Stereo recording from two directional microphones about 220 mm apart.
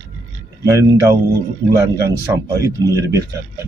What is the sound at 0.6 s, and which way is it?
Speech, 15° right (ahead or behind).